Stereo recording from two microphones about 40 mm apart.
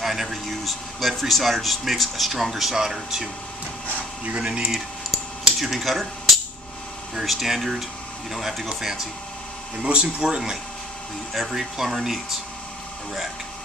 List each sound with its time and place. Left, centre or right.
0.0 s speech: centre
4.4 s speech: right
5.6 s speech: centre
9.8 s speech: right